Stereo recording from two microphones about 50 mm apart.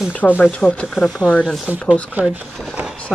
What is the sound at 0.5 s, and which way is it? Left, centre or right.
Speech, left.